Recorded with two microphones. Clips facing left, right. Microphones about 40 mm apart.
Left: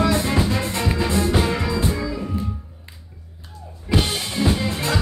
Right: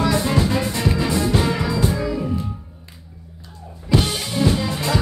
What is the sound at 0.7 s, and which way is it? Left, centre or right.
Music, centre.